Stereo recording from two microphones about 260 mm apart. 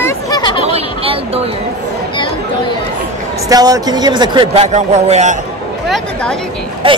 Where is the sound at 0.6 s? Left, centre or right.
Right.